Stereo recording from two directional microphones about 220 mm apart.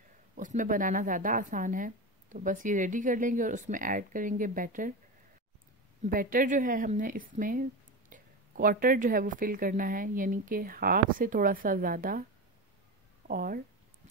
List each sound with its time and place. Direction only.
0.4 s speech: 35° right (ahead or behind)
6.0 s speech: 40° right (ahead or behind)
13.3 s speech: 40° right (ahead or behind)